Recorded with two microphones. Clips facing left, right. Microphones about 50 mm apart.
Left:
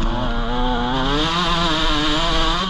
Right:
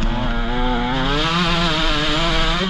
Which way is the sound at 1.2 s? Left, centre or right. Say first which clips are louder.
Even; right.